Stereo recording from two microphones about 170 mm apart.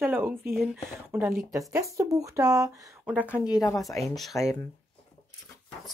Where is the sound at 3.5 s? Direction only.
20° left (ahead or behind).